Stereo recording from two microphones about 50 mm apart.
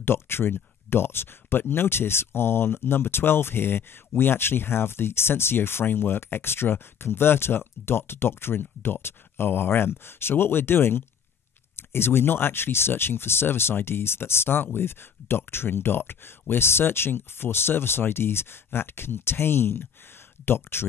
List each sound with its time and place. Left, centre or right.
0.0 s speech: left